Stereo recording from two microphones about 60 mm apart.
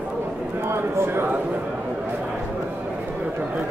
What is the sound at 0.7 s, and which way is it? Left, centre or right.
Speech, right.